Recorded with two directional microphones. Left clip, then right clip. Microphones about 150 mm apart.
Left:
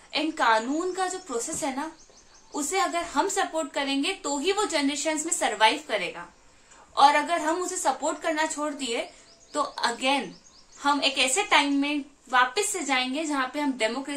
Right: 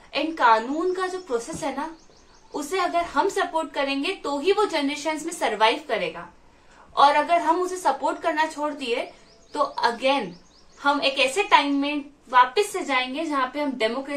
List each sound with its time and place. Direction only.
0.1 s a woman's voice: 25° left (ahead or behind)